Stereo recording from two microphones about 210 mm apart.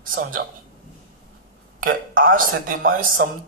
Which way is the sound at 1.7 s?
40° right (ahead or behind).